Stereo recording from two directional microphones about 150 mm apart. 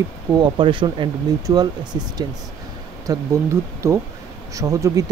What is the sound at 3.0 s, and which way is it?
Speech, 20° right (ahead or behind).